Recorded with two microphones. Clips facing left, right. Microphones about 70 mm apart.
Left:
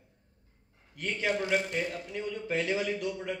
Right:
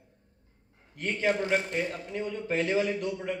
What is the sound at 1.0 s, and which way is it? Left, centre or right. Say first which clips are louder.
A man's voice: right 3 dB; right.